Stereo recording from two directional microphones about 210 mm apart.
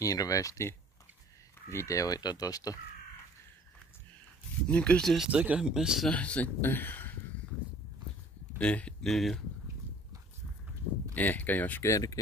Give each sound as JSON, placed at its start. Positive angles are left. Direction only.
{"t": 0.0, "sound": "speech", "side_deg": 15}
{"t": 4.6, "sound": "speech", "side_deg": 5}
{"t": 8.5, "sound": "speech", "side_deg": 5}
{"t": 11.1, "sound": "speech", "side_deg": 10}